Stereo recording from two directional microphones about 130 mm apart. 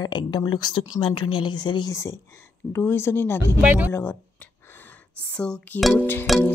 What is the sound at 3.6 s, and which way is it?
Speech, 10° right (ahead or behind).